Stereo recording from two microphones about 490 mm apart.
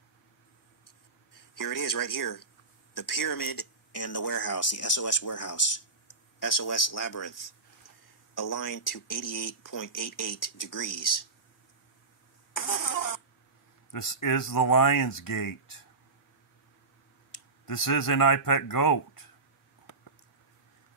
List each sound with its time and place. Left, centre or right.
1.3 s speech: left
12.5 s a sound: left
13.9 s speech: left
17.3 s speech: left